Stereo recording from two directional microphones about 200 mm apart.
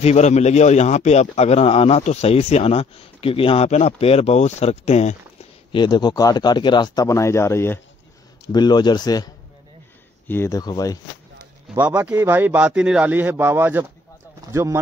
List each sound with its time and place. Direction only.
0.0 s a man's voice: 35° left (ahead or behind)
5.7 s speech: 20° left (ahead or behind)
11.7 s a man's voice: 10° right (ahead or behind)